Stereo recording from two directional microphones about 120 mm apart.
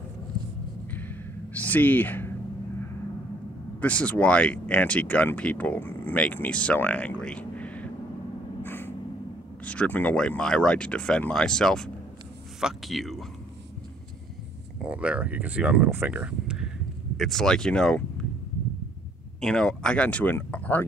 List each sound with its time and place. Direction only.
0.9 s a sound: 15° left (ahead or behind)
3.8 s speech: 10° left (ahead or behind)
8.6 s a sound: 15° left (ahead or behind)
9.7 s speech: 15° left (ahead or behind)
14.8 s speech: 10° right (ahead or behind); by 18.0 s 5° left (ahead or behind)
19.4 s speech: 5° left (ahead or behind)